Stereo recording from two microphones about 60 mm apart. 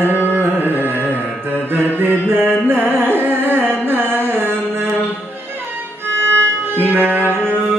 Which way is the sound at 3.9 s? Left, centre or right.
Right.